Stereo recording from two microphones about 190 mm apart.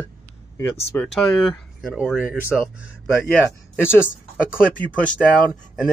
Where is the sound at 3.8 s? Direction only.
10° left (ahead or behind).